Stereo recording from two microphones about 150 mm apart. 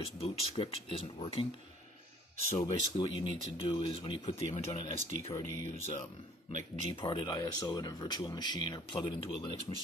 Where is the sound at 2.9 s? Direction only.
35° left (ahead or behind).